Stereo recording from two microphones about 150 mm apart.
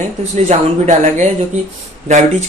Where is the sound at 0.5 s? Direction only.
55° right (ahead or behind).